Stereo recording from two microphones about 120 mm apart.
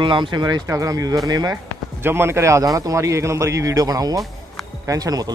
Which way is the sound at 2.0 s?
20° right (ahead or behind).